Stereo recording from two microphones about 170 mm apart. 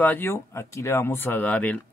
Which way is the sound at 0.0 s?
10° left (ahead or behind).